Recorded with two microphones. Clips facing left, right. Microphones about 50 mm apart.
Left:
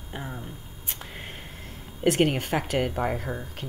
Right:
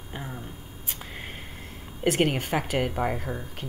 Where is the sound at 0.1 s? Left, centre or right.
Centre.